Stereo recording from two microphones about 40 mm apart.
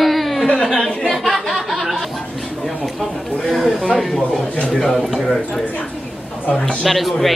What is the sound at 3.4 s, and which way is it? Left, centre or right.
Speech, centre.